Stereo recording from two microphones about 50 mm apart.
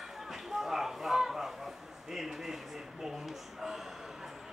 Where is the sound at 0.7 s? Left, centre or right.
Centre.